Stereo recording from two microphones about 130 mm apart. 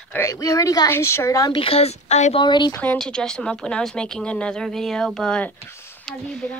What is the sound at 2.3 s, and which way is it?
Speech, 35° left (ahead or behind).